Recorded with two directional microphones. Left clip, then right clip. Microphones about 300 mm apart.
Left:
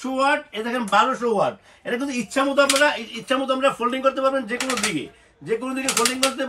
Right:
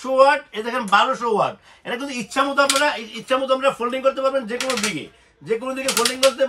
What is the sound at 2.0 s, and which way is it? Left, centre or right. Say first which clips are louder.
A man's voice: right 2 dB; centre.